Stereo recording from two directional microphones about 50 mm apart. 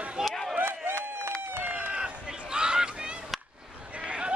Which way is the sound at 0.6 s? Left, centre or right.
Right.